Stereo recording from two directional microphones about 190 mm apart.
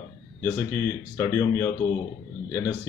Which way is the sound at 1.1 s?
15° left (ahead or behind).